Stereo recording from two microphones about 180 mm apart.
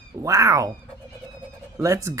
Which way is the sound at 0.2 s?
20° right (ahead or behind).